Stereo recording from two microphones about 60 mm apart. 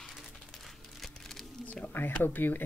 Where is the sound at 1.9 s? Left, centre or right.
Left.